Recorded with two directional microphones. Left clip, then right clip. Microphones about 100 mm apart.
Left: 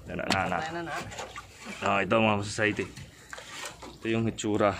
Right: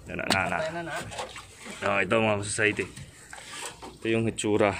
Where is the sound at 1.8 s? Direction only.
25° left (ahead or behind).